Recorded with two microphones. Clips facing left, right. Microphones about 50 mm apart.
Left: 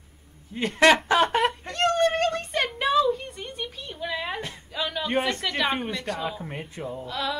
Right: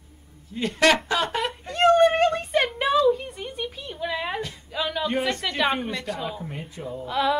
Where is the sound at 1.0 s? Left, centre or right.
Left.